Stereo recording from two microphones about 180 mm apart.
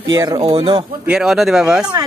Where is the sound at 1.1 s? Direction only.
5° right (ahead or behind).